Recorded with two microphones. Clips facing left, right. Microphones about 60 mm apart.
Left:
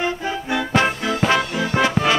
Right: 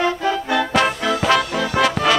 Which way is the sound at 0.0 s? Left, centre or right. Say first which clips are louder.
Right 4 dB; centre.